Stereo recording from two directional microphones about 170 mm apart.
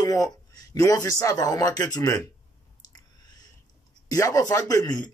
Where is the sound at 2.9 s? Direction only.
20° left (ahead or behind).